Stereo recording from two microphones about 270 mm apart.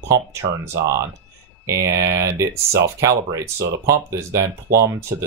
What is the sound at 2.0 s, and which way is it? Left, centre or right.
Speech, centre.